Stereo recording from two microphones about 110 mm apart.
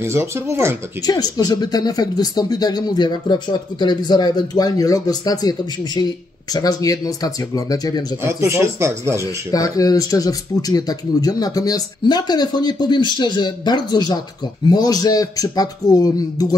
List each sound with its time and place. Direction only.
0.0 s speech: 25° right (ahead or behind)
1.0 s speech: 35° left (ahead or behind)
8.2 s speech: 25° right (ahead or behind)
9.2 s speech: 30° left (ahead or behind)